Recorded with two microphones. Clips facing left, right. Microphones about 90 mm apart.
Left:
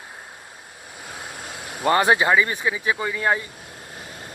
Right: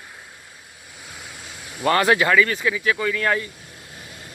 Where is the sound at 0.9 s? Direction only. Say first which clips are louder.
Left 4 dB; 45° left (ahead or behind).